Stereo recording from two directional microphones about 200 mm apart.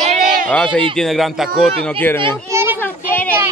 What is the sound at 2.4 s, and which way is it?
Children playing, 10° right (ahead or behind).